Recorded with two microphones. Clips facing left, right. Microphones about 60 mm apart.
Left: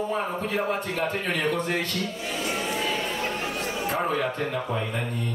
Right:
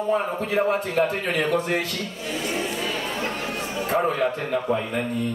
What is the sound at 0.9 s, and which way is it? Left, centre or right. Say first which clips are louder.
Speech: right 5 dB; centre.